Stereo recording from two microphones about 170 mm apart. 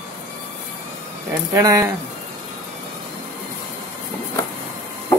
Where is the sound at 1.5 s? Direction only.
20° right (ahead or behind).